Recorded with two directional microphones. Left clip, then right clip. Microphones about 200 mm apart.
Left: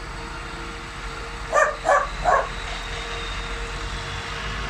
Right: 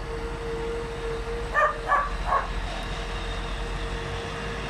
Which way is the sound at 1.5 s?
55° left (ahead or behind).